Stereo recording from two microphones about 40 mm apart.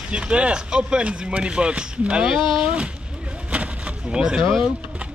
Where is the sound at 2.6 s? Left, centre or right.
Right.